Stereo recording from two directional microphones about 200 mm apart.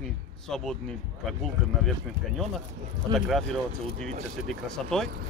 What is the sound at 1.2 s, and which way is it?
Speech, centre (ahead or behind).